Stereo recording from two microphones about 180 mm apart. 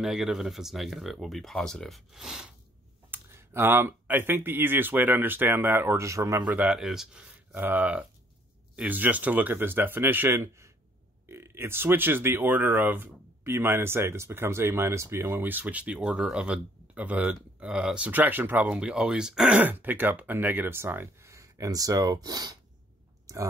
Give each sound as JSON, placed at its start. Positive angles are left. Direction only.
{"t": 0.0, "sound": "speech", "side_deg": -5}
{"t": 3.1, "sound": "speech", "side_deg": -15}
{"t": 23.3, "sound": "a sound", "side_deg": -20}